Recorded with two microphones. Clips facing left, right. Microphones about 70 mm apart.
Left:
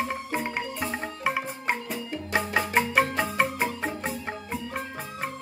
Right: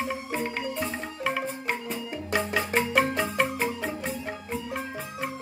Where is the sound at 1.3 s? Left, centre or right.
Centre.